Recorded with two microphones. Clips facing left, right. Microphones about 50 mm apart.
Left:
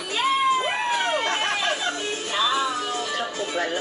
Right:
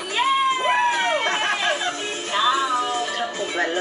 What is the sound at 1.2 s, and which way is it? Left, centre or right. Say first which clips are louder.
Chatter: right 2 dB; right.